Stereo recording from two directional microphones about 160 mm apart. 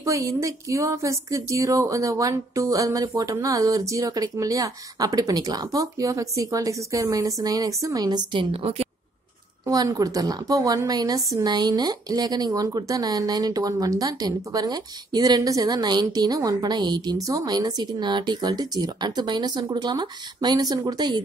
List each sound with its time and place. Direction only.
0.0 s speech: 20° right (ahead or behind); by 8.8 s 35° right (ahead or behind)
9.7 s speech: 25° right (ahead or behind)